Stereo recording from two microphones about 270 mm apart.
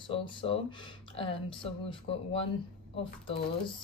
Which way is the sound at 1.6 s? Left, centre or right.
Centre.